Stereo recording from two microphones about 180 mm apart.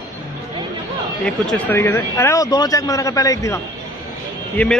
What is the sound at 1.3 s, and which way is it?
A man's voice, 5° left (ahead or behind).